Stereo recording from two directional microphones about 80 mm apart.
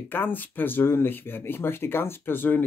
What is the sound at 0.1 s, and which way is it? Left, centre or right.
Speech, left.